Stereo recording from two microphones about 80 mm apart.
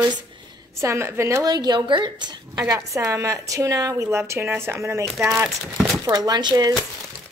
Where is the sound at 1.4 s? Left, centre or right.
Right.